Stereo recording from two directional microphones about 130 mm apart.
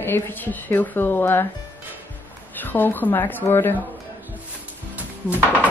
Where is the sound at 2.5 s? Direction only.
15° left (ahead or behind).